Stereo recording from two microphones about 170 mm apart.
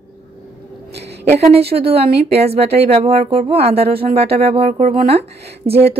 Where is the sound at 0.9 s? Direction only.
80° right.